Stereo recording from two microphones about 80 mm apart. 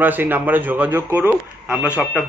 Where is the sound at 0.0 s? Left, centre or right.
Right.